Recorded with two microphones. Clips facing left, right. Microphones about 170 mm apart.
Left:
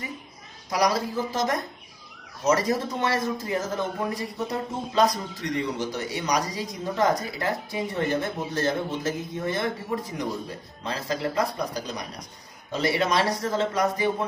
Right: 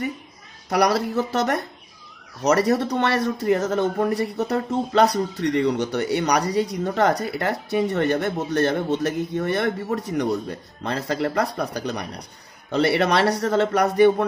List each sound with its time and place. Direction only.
0.7 s speech: 65° right (ahead or behind)